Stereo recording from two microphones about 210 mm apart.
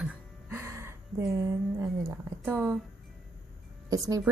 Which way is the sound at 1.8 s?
15° right (ahead or behind).